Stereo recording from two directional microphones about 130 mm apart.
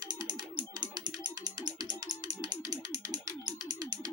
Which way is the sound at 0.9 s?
30° right (ahead or behind).